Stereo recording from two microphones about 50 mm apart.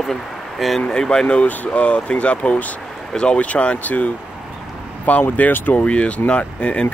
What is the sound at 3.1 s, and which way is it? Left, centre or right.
Speech, centre.